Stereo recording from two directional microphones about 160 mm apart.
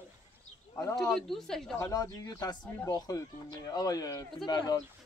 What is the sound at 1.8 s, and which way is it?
Speech, 20° left (ahead or behind).